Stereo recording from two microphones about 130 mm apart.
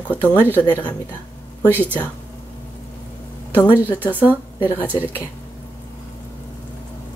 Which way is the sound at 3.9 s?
15° left (ahead or behind).